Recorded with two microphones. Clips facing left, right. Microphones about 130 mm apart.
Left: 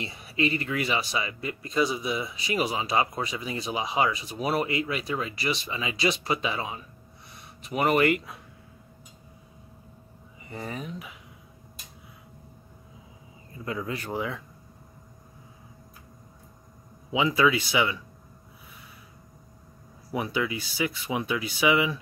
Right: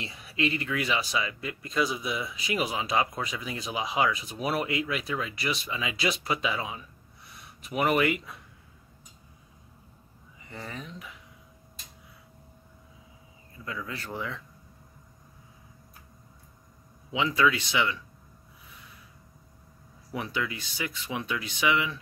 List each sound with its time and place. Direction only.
0.0 s speech: centre (ahead or behind)
10.5 s speech: 15° left (ahead or behind)
13.8 s speech: 15° left (ahead or behind)
17.1 s speech: 10° left (ahead or behind)
20.1 s speech: 10° left (ahead or behind)